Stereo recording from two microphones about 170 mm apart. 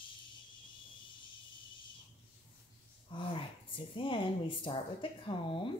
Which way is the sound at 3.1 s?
30° left (ahead or behind).